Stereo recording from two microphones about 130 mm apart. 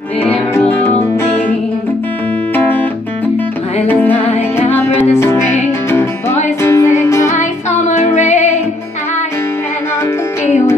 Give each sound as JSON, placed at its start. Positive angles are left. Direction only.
{"t": 0.2, "sound": "music", "side_deg": 15}
{"t": 2.5, "sound": "music", "side_deg": 15}
{"t": 3.8, "sound": "music", "side_deg": 15}
{"t": 7.3, "sound": "music", "side_deg": 65}